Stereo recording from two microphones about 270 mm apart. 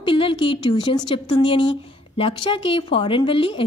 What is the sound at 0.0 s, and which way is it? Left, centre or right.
A woman's voice, centre.